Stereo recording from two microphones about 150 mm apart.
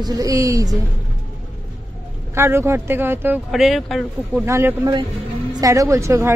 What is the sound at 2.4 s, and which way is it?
A woman's voice, 15° right (ahead or behind).